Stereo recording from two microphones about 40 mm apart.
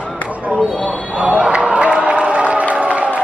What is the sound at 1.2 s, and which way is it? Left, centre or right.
Music, right.